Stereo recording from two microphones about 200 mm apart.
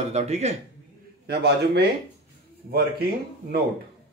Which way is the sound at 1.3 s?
55° right (ahead or behind).